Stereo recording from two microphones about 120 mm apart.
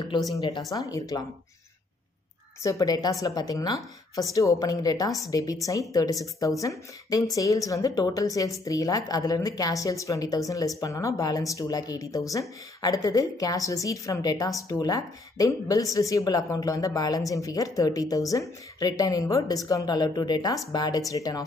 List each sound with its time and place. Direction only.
0.4 s speech: 30° left (ahead or behind)
2.6 s speech: 30° left (ahead or behind)